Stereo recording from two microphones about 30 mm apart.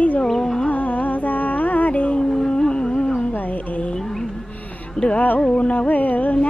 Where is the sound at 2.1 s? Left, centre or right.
Left.